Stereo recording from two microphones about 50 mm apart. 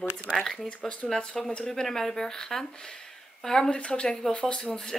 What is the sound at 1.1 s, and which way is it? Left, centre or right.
Speech, centre.